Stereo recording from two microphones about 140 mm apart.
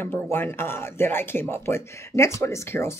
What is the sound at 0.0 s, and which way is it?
A woman's voice, 15° left (ahead or behind).